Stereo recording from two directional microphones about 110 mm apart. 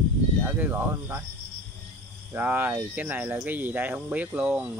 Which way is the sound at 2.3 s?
15° right (ahead or behind).